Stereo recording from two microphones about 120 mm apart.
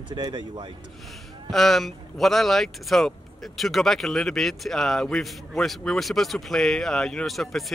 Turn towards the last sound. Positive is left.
turn(degrees=0)  # may be behind; listen again after turning